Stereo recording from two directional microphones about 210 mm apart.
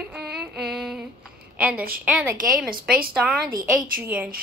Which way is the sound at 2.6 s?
45° right (ahead or behind).